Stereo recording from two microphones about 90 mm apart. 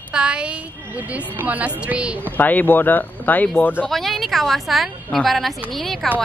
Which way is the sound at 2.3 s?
20° left (ahead or behind).